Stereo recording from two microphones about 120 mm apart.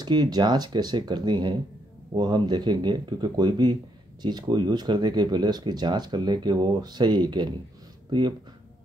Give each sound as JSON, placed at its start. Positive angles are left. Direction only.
{"t": 0.0, "sound": "speech", "side_deg": -35}